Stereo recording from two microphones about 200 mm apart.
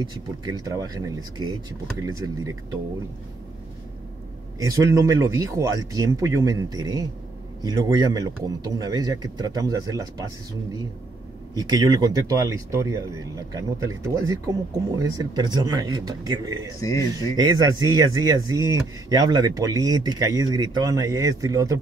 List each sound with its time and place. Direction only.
0.0 s speech: 15° right (ahead or behind)
4.6 s speech: 15° right (ahead or behind)
11.5 s speech: 20° right (ahead or behind)
16.8 s speech: 15° left (ahead or behind)
17.4 s speech: 20° right (ahead or behind)